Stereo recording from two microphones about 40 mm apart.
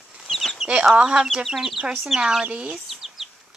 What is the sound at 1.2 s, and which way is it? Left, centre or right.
Speech, centre.